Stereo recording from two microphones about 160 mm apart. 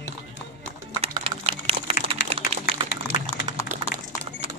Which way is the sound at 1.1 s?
35° right (ahead or behind).